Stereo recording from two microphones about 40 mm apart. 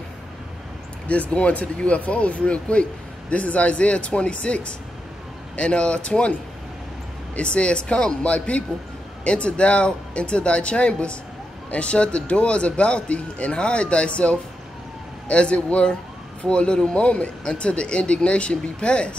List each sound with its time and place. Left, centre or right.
1.3 s speech: left
7.3 s speech: left